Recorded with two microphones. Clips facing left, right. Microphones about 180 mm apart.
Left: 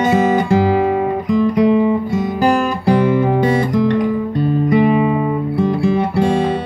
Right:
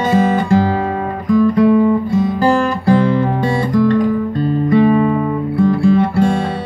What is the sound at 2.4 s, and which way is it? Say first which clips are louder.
Guitar: left 1 dB; 15° left (ahead or behind).